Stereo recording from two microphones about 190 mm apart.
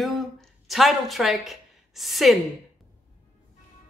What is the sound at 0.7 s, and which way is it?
A woman's voice, centre (ahead or behind).